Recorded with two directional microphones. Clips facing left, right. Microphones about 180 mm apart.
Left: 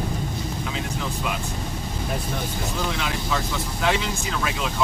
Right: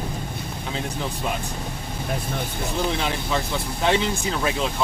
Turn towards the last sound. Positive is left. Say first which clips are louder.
# right 3 dB
turn(degrees=-30)  # may be behind; listen again after turning